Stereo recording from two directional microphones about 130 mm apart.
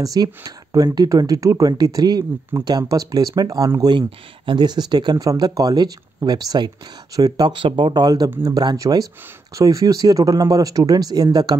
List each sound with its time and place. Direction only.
0.0 s speech: 30° right (ahead or behind)